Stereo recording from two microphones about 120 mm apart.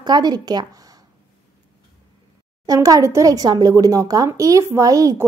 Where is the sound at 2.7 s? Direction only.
30° right (ahead or behind).